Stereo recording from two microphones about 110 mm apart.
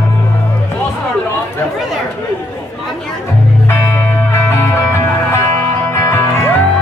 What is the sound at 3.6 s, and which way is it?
Music, 25° left (ahead or behind).